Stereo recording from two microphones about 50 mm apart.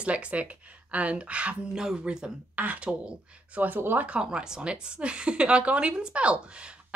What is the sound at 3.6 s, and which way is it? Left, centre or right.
Speech, right.